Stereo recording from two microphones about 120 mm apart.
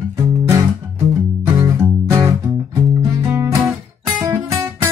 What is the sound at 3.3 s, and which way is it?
Guitar, 25° right (ahead or behind).